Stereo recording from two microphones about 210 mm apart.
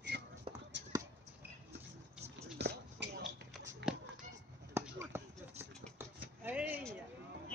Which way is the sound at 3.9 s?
5° right (ahead or behind).